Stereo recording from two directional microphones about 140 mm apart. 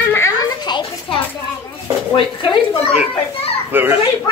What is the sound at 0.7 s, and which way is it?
Speech, 35° left (ahead or behind).